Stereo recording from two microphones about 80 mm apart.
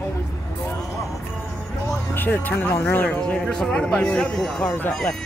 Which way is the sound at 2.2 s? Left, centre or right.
Left.